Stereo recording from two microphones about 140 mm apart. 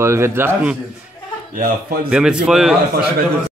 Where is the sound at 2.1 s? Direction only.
5° right (ahead or behind).